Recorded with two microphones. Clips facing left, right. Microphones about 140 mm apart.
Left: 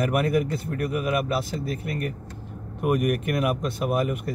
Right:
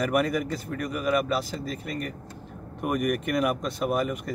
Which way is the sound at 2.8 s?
5° left (ahead or behind).